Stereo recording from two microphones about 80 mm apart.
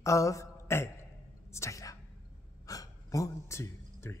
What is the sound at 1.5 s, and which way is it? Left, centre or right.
A man's voice, left.